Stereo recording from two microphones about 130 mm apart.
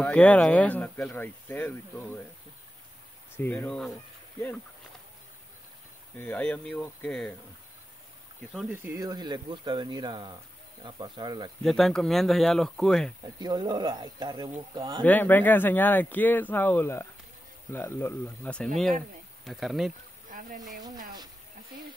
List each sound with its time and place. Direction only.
0.0 s speech: 10° left (ahead or behind)
3.3 s speech: 15° left (ahead or behind)
6.1 s speech: 10° left (ahead or behind)
8.7 s speech: 20° right (ahead or behind)
9.0 s speech: 30° right (ahead or behind)
11.6 s speech: 5° left (ahead or behind)
13.2 s speech: 30° right (ahead or behind)
15.0 s speech: 15° left (ahead or behind)
19.4 s speech: centre (ahead or behind)
20.2 s speech: 90° right